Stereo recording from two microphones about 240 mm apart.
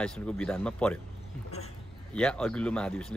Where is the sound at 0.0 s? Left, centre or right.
Centre.